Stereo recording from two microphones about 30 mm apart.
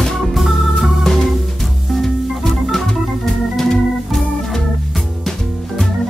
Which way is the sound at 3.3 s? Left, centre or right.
Centre.